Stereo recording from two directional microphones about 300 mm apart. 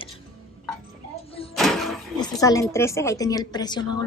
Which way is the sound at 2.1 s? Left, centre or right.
Centre.